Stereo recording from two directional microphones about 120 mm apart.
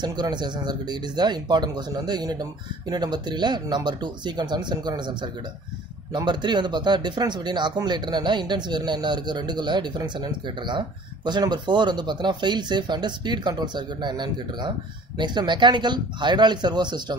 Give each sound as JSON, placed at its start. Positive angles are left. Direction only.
{"t": 0.0, "sound": "speech", "side_deg": -35}